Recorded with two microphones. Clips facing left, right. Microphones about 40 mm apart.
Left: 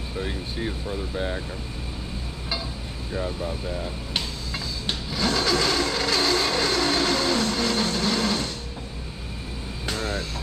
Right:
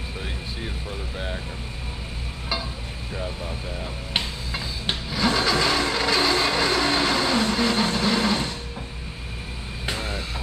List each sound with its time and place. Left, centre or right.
4.1 s a sound: right
5.1 s vehicle: centre
9.8 s vehicle: centre